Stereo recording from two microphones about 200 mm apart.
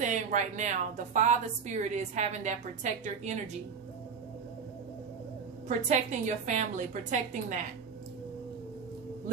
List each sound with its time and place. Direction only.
0.0 s a woman's voice: 40° right (ahead or behind)
5.7 s a woman's voice: 40° right (ahead or behind)